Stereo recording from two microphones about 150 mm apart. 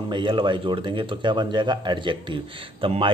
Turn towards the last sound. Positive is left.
turn(degrees=-35)  # may be behind; listen again after turning